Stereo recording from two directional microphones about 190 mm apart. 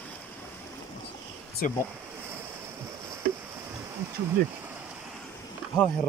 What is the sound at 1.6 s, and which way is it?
Speech, 45° left (ahead or behind).